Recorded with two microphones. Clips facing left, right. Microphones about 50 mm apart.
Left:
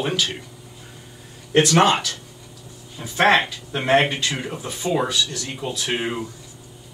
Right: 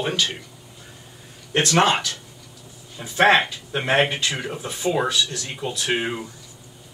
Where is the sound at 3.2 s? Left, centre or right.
Centre.